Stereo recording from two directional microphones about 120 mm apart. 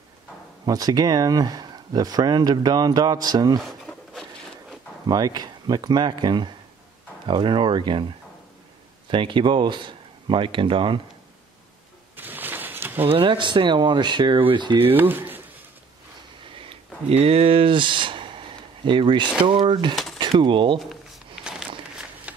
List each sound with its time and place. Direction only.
0.7 s speech: 30° right (ahead or behind)
3.8 s wood: centre (ahead or behind)
5.0 s speech: 35° right (ahead or behind)
9.1 s speech: 45° right (ahead or behind)
12.2 s a sound: 15° right (ahead or behind)
13.1 s speech: 45° right (ahead or behind)
14.9 s speech: 15° right (ahead or behind)
16.5 s a sound: 55° right (ahead or behind)
19.4 s speech: 45° right (ahead or behind)